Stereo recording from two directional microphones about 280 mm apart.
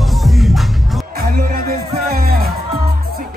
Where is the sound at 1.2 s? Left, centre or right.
Right.